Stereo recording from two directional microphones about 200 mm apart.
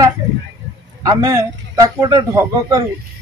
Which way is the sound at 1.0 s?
20° right (ahead or behind).